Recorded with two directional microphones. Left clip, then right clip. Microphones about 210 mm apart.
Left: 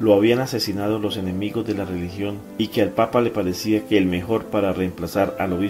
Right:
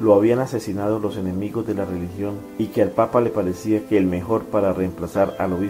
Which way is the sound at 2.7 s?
40° left (ahead or behind).